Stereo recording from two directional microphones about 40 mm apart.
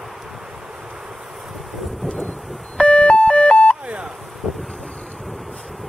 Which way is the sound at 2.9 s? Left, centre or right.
Left.